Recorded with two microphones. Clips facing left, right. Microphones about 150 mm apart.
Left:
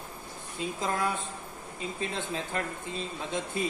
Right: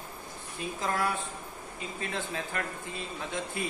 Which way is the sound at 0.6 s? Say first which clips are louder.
Left 1 dB; 20° left (ahead or behind).